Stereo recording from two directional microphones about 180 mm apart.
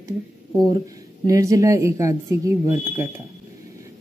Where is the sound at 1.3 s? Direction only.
20° right (ahead or behind).